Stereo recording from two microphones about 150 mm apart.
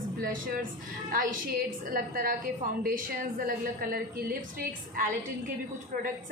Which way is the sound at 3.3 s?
70° right (ahead or behind).